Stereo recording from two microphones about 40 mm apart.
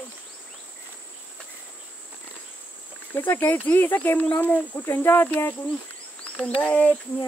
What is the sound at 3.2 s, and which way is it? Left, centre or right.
Speech, left.